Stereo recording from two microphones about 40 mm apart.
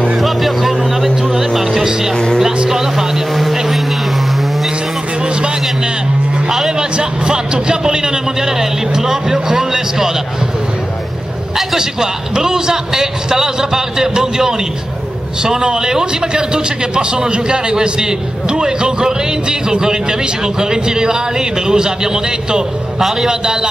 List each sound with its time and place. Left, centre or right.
0.2 s speech: centre
1.3 s music: centre
2.7 s vehicle: centre
5.2 s a sound: right
6.8 s a man's voice: right
11.5 s a man's voice: centre
23.4 s a man's voice: centre